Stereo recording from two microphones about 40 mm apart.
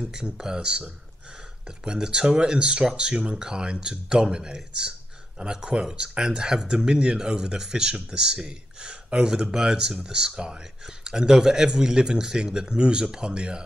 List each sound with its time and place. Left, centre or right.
0.1 s speech: centre